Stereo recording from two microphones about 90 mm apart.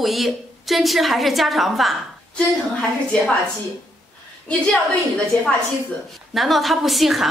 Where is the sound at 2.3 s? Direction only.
10° left (ahead or behind).